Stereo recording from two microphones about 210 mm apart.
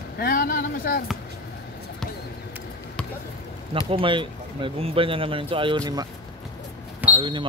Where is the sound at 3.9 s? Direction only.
25° right (ahead or behind).